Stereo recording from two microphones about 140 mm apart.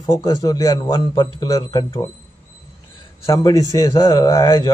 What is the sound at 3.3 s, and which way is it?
A man's voice, 25° left (ahead or behind).